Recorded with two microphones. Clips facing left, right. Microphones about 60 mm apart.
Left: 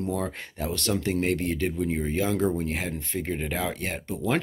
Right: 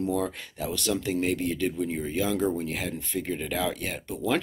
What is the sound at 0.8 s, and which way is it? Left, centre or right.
Speech, left.